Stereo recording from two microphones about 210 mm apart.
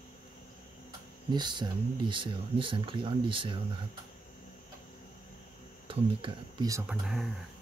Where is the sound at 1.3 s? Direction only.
20° right (ahead or behind).